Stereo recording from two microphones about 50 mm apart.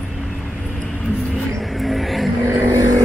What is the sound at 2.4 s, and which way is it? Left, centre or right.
Vehicle, right.